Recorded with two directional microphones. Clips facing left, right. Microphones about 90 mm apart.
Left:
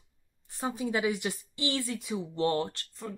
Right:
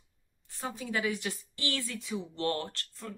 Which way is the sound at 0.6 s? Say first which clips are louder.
Left 4 dB; 20° left (ahead or behind).